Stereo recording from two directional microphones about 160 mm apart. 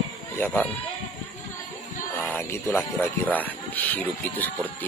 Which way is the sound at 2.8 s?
10° left (ahead or behind).